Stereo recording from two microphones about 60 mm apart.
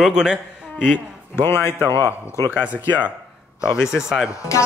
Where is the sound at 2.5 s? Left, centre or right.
Right.